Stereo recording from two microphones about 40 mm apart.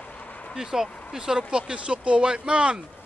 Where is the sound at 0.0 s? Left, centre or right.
Left.